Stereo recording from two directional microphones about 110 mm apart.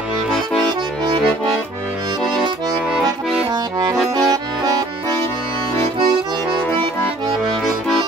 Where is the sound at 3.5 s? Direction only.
35° right (ahead or behind).